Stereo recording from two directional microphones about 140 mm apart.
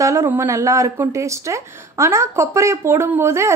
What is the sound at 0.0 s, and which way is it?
Speech, 20° right (ahead or behind).